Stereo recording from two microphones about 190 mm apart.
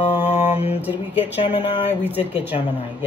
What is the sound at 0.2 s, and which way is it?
Mantra, 35° left (ahead or behind).